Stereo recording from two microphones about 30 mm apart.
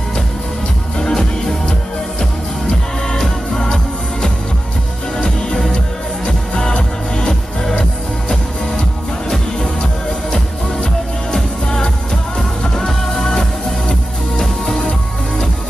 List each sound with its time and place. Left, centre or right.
0.9 s music: left
3.2 s music: centre
11.6 s music: left
12.7 s music: centre